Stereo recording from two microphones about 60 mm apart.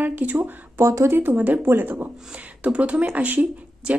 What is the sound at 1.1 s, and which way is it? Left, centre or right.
Speech, right.